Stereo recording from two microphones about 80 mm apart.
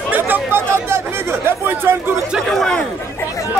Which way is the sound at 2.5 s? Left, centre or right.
Centre.